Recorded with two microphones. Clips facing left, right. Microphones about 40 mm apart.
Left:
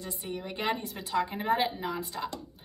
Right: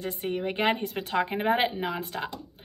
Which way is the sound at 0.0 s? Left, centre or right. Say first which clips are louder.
Right 7 dB; right.